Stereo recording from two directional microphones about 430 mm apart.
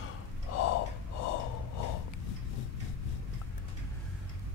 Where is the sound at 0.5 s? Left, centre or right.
Left.